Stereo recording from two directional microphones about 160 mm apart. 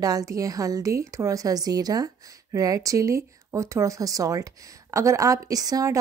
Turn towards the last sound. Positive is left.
turn(degrees=-20)  # may be behind; listen again after turning